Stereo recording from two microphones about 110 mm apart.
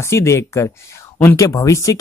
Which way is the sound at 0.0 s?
25° left (ahead or behind).